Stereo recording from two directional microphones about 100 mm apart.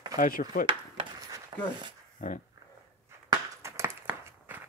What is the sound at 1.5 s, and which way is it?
Speech, 60° right (ahead or behind).